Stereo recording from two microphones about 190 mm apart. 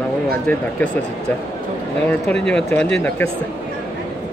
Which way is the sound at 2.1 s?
5° left (ahead or behind).